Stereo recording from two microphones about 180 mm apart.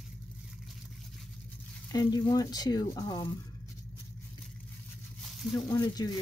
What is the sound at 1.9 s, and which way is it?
Speech, 20° left (ahead or behind).